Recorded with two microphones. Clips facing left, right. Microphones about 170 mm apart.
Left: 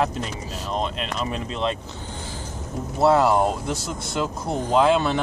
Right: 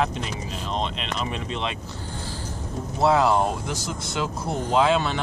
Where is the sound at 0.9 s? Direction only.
45° left (ahead or behind).